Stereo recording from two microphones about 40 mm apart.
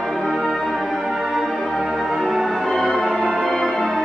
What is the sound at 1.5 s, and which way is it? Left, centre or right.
Music, centre.